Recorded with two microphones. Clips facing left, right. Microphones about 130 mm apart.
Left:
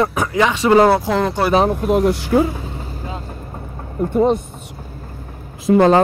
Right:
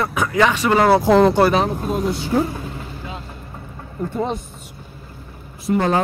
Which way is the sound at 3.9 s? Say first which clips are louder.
Left 8 dB; 55° left (ahead or behind).